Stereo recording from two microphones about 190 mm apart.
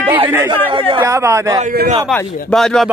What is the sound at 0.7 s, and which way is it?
Speech, 25° right (ahead or behind).